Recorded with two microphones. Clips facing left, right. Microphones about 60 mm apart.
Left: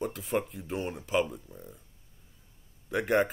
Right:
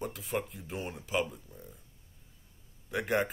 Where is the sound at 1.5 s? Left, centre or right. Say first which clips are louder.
Left 4 dB; centre.